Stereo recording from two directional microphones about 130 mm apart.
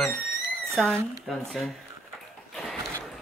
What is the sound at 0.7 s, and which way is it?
Speech, 5° left (ahead or behind).